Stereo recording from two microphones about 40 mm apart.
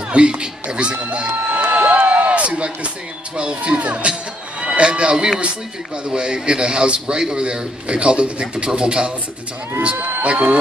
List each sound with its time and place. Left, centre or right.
0.1 s a man's voice: right
1.6 s a sound: right
3.3 s a man's voice: right
9.9 s speech: right
10.2 s speech: right